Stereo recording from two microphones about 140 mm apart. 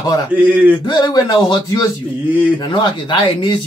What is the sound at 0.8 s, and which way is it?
Speech, 30° left (ahead or behind).